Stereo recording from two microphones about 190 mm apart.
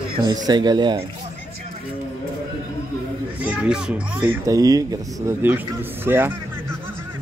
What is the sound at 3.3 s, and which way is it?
Speech, 5° right (ahead or behind).